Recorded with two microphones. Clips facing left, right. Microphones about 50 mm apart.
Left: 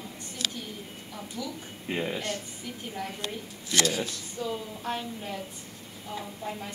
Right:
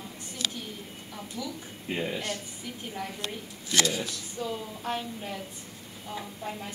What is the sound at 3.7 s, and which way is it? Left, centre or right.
Speech, centre.